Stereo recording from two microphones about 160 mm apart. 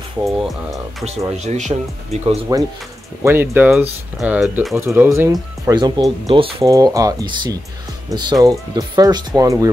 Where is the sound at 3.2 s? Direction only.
15° right (ahead or behind).